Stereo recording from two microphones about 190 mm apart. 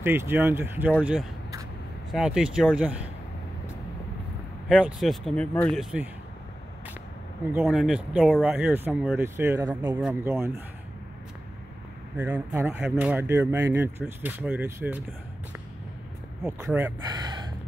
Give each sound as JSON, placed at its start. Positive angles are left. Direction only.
{"t": 0.0, "sound": "speech", "side_deg": -10}
{"t": 2.1, "sound": "speech", "side_deg": -5}
{"t": 4.6, "sound": "speech", "side_deg": 0}
{"t": 7.5, "sound": "speech", "side_deg": -5}
{"t": 12.2, "sound": "speech", "side_deg": -10}
{"t": 16.4, "sound": "speech", "side_deg": -10}
{"t": 17.1, "sound": "gasp", "side_deg": -25}